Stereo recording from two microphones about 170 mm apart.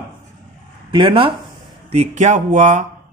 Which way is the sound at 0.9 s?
30° right (ahead or behind).